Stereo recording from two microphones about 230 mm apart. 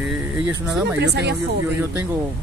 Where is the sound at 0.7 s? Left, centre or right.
Centre.